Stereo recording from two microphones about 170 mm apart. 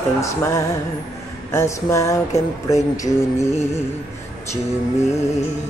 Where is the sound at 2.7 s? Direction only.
20° left (ahead or behind).